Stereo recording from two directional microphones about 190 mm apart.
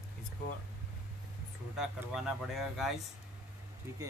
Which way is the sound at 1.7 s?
5° right (ahead or behind).